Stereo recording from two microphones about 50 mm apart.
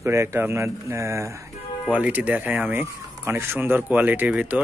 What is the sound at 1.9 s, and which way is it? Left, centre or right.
Speech, right.